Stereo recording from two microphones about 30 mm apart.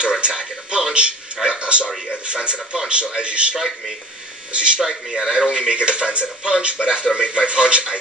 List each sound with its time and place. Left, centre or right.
0.0 s speech: right
4.8 s speech: centre
5.5 s speech: right